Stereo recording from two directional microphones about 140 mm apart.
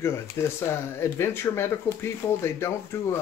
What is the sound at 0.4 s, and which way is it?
Speech, 20° left (ahead or behind).